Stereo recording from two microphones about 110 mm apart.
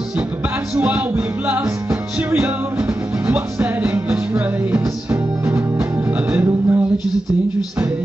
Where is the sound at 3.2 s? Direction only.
10° right (ahead or behind).